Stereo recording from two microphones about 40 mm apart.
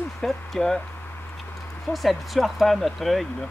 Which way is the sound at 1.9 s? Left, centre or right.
Centre.